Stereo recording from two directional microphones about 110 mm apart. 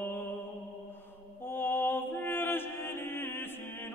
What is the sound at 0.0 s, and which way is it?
Mantra, 20° left (ahead or behind).